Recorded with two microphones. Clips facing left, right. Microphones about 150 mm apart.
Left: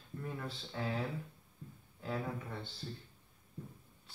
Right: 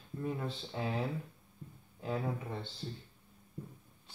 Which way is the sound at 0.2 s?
20° right (ahead or behind).